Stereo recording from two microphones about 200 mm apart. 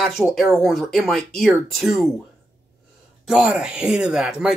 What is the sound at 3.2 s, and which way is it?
Speech, 5° right (ahead or behind).